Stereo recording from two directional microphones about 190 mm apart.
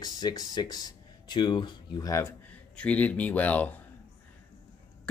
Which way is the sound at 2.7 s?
5° left (ahead or behind).